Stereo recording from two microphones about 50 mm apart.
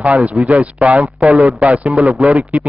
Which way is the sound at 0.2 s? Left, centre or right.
Right.